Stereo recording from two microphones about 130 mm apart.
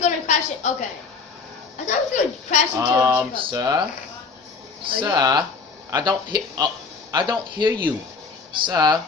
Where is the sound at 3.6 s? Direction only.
30° right (ahead or behind).